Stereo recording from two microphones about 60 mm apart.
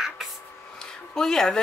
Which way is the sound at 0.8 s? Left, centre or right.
Centre.